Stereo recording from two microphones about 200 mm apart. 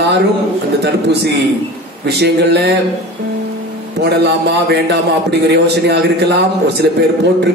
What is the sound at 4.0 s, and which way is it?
A man's voice, 55° right (ahead or behind).